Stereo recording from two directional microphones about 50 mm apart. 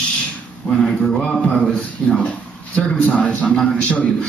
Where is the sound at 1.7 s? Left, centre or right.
Centre.